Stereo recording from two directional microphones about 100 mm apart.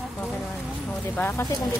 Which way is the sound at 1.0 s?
25° left (ahead or behind).